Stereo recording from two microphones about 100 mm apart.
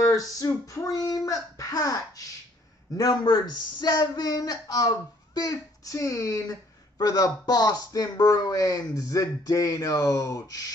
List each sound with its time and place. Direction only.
0.0 s female singing: 35° left (ahead or behind)
0.7 s speech: 35° left (ahead or behind)